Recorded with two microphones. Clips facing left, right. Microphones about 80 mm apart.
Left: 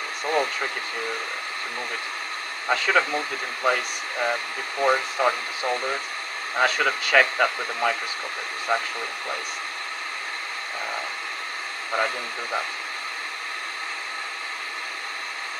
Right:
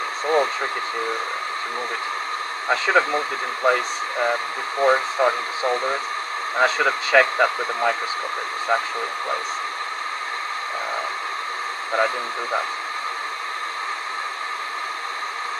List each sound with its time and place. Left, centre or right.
0.3 s a sound: right
2.7 s speech: right
11.9 s speech: right